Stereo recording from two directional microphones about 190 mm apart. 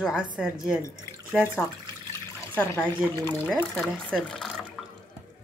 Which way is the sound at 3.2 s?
10° left (ahead or behind).